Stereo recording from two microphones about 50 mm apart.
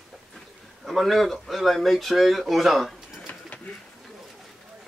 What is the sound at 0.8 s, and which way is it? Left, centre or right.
Speech, centre.